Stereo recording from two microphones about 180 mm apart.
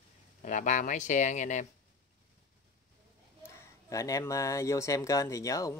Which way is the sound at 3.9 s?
20° left (ahead or behind).